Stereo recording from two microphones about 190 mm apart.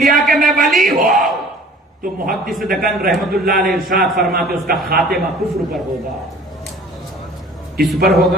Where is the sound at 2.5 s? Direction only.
Centre (ahead or behind).